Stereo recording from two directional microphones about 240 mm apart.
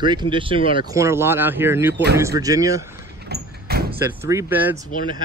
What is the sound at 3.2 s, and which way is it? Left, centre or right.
Sliding door, right.